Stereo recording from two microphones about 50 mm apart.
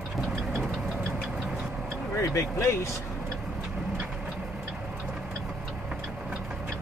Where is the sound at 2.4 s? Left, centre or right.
Left.